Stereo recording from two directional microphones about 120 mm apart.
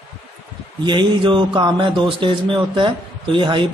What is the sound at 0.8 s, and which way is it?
A man's voice, 40° right (ahead or behind).